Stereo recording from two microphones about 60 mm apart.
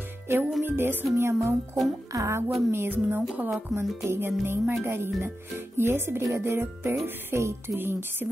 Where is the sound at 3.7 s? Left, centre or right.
Right.